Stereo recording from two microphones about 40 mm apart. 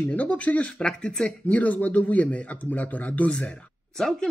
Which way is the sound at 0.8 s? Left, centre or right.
Left.